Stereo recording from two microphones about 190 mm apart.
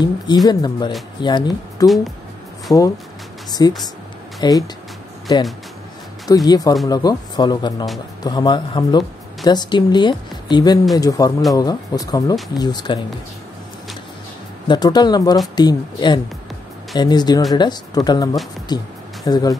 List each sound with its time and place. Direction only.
0.5 s speech: 20° left (ahead or behind)
14.7 s speech: 20° left (ahead or behind)